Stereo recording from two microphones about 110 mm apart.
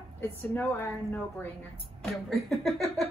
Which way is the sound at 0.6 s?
15° left (ahead or behind).